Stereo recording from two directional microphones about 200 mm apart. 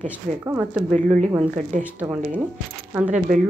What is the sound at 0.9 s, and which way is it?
Speech, 30° right (ahead or behind).